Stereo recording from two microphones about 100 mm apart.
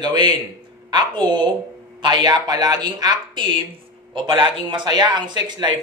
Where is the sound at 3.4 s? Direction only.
55° right (ahead or behind).